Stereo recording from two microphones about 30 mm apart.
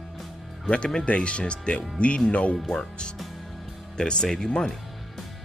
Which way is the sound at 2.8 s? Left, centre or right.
Left.